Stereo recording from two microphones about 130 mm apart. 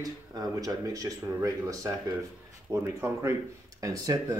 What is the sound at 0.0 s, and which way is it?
Speech, 30° right (ahead or behind).